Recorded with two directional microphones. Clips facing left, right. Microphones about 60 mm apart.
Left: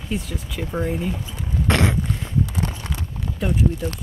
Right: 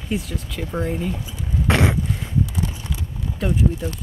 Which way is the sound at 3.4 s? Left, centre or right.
Centre.